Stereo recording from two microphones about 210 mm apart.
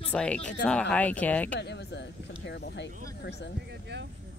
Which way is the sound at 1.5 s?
55° left (ahead or behind).